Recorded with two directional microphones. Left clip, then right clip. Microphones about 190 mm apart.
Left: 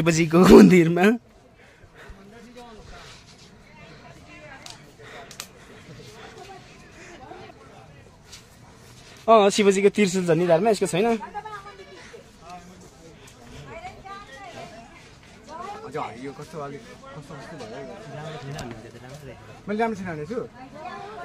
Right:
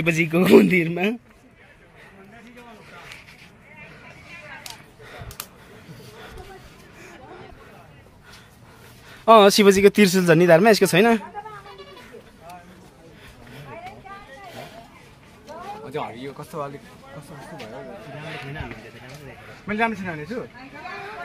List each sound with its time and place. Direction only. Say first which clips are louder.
0.0 s a man's voice: left 2 dB; 25° left (ahead or behind)
9.2 s speech: right 4 dB; 20° right (ahead or behind)
16.3 s speech: right 4 dB; 40° right (ahead or behind)
19.6 s a man's voice: right 2 dB; 5° right (ahead or behind)